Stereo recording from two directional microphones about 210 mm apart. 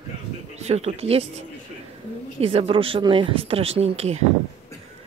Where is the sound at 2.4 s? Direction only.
25° right (ahead or behind).